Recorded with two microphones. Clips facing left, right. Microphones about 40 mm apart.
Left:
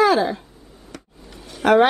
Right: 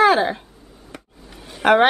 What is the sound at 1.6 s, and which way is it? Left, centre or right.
Speech, right.